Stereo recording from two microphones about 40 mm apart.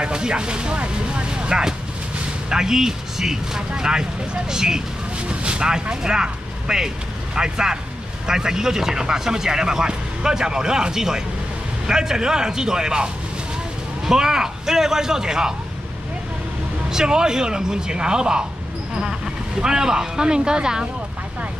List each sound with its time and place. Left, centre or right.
0.0 s speech: right
16.9 s speech: centre
19.6 s speech: centre